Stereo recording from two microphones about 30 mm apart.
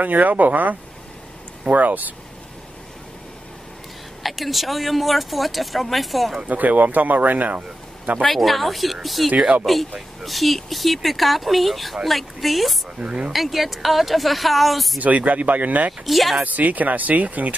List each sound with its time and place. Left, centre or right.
0.0 s speech: right
4.2 s speech: centre
6.4 s speech: right
8.4 s speech: centre
13.0 s speech: right
13.3 s speech: centre
15.0 s speech: right
16.1 s speech: centre
16.3 s speech: right